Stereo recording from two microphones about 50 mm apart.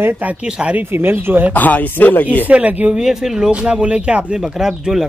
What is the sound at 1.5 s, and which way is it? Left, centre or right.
Speech, left.